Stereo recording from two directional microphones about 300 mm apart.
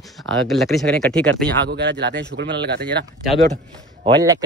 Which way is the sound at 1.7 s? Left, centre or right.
Right.